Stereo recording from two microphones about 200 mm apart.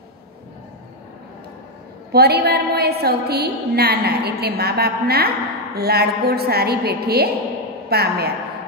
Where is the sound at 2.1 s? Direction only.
55° right (ahead or behind).